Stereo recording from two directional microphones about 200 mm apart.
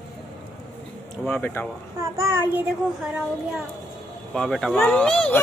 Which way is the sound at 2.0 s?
15° right (ahead or behind).